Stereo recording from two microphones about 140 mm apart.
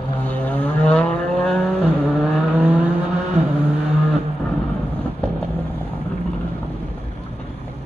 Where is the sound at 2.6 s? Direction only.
10° right (ahead or behind).